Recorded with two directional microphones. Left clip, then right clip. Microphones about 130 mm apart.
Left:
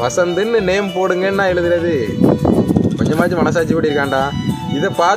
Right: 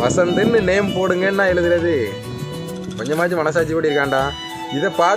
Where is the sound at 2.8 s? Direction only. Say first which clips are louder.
Left 8 dB; centre (ahead or behind).